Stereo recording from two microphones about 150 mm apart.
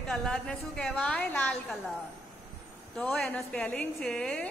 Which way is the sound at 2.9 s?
10° left (ahead or behind).